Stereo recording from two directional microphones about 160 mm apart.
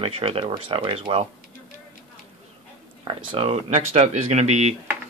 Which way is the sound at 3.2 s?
35° right (ahead or behind).